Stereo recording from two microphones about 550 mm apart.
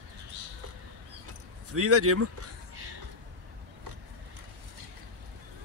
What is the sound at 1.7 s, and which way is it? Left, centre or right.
Speech, right.